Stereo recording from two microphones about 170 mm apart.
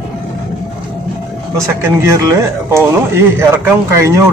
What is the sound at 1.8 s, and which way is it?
A man's voice, 15° right (ahead or behind).